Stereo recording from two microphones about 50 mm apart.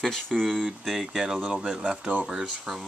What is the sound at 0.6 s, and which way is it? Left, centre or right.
Speech, centre.